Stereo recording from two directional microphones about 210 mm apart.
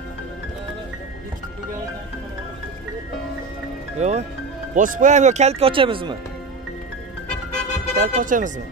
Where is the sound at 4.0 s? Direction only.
30° right (ahead or behind).